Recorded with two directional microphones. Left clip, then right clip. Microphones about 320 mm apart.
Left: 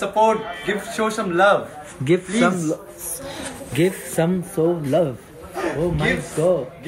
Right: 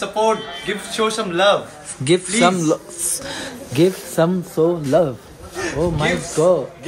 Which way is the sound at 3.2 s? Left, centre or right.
Centre.